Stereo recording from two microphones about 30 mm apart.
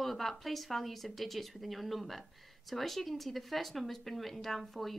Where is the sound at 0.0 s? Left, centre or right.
Centre.